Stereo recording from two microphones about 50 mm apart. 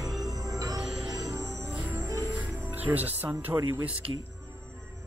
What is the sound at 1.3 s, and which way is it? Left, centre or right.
Music, right.